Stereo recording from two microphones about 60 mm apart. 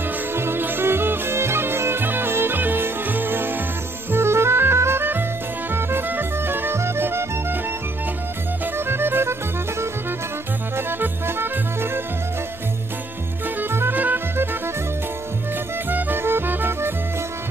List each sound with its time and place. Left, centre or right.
0.3 s music: right
8.7 s music: right
10.9 s music: right
13.6 s music: right
15.9 s music: right